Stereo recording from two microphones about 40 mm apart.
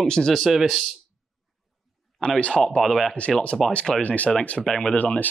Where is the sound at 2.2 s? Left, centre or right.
Left.